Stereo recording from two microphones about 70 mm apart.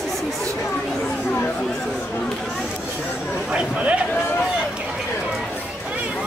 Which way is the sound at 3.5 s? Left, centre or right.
Centre.